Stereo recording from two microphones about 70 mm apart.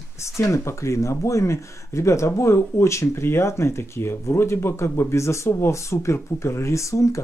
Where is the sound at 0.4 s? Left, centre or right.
Left.